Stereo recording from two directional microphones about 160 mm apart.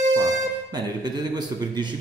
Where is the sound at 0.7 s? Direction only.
25° right (ahead or behind).